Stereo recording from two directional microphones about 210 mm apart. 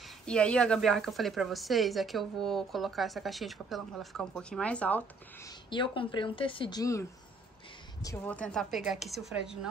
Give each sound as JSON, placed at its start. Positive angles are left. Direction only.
{"t": 0.3, "sound": "a woman's voice", "side_deg": 5}
{"t": 5.7, "sound": "a woman's voice", "side_deg": 20}